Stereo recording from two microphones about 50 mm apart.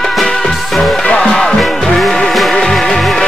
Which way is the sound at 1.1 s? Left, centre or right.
Centre.